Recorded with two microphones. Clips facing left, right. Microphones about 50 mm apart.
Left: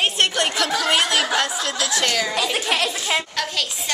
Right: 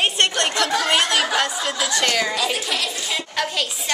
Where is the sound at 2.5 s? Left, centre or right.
Left.